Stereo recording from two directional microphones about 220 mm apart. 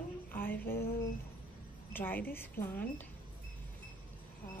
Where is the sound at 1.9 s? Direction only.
10° left (ahead or behind).